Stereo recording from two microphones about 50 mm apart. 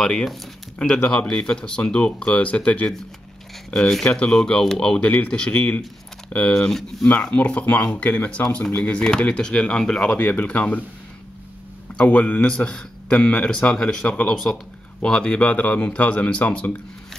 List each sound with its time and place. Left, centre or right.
0.0 s speech: centre
4.3 s speech: centre
7.2 s speech: left
9.3 s speech: centre
10.0 s speech: left
12.0 s speech: left